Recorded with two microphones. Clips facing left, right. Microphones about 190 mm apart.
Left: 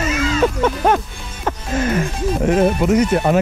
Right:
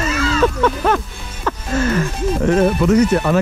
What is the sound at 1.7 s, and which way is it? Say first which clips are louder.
Music: right 1 dB; 10° left (ahead or behind).